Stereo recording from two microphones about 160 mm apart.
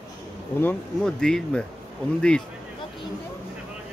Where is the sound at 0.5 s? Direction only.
10° left (ahead or behind).